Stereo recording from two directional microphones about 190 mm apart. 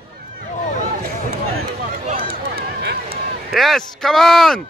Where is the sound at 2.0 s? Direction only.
50° right (ahead or behind).